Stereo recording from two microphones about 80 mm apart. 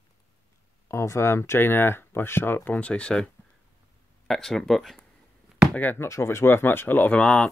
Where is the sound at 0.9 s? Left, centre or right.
Left; by 5.0 s centre.